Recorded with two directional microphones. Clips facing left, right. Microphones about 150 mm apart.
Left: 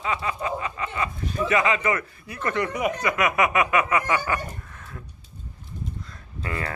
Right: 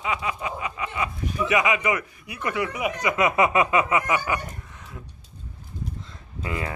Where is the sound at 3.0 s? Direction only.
25° right (ahead or behind).